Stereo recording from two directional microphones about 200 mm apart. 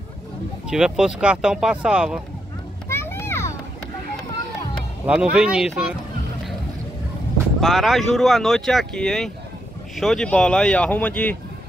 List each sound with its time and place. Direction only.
0.7 s speech: 5° right (ahead or behind)
2.9 s children playing: 10° left (ahead or behind)
5.0 s speech: 5° right (ahead or behind)
7.6 s speech: centre (ahead or behind)